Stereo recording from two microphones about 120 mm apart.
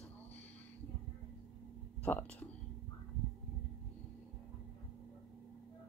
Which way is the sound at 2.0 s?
15° left (ahead or behind).